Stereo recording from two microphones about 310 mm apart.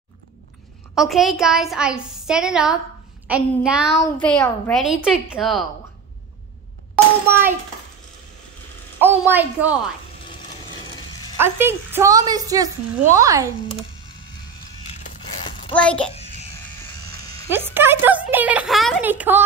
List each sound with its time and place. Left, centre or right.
0.9 s a woman's voice: centre
7.2 s a woman's voice: centre
9.0 s a woman's voice: centre
11.3 s a woman's voice: centre
15.0 s a sound: centre
15.7 s a woman's voice: centre
16.2 s a sound: centre
16.8 s a sound: centre
17.5 s a woman's voice: centre